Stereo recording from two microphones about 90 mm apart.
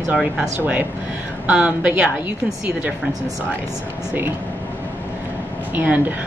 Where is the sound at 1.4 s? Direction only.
15° right (ahead or behind).